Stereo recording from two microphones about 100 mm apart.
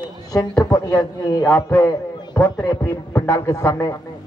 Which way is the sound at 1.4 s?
15° left (ahead or behind).